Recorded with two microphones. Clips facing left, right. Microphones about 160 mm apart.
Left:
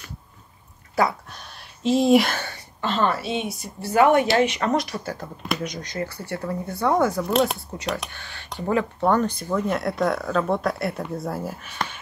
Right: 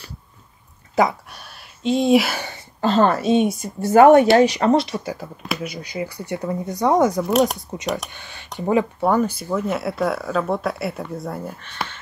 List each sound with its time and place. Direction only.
0.9 s speech: 15° right (ahead or behind)
1.8 s speech: centre (ahead or behind)
2.8 s a woman's voice: 40° right (ahead or behind); by 5.1 s 25° right (ahead or behind)
5.1 s speech: 5° right (ahead or behind)
7.2 s speech: 5° right (ahead or behind)
7.5 s speech: 20° right (ahead or behind)
9.1 s speech: 10° right (ahead or behind)